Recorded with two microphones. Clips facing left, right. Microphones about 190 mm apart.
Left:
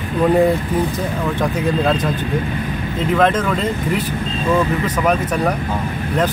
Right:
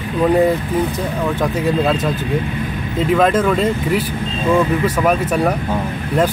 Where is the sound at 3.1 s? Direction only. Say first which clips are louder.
Right 2 dB; 10° right (ahead or behind).